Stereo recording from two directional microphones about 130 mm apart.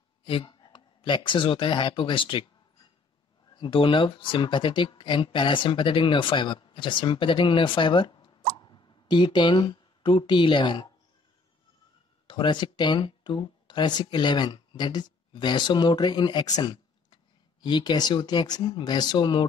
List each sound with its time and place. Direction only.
0.2 s speech: 40° left (ahead or behind)
3.5 s speech: 40° left (ahead or behind)
12.3 s speech: 35° left (ahead or behind)